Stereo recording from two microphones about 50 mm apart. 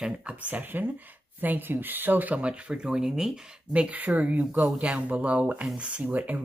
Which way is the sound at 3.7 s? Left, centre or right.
Right.